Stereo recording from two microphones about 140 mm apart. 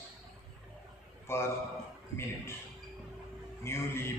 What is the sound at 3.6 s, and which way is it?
Speech, 20° left (ahead or behind).